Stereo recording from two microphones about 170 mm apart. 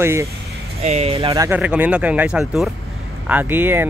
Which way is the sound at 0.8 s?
40° right (ahead or behind).